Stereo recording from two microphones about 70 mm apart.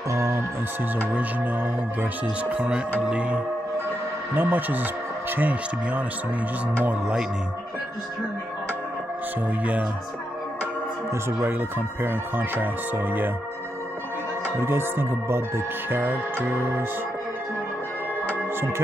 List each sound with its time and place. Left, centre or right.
0.1 s music: right
1.1 s speech: right
2.5 s speech: centre
4.4 s speech: right
12.0 s speech: right
14.6 s speech: right
18.4 s music: right